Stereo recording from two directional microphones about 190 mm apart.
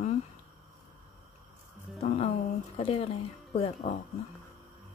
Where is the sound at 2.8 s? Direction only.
30° left (ahead or behind).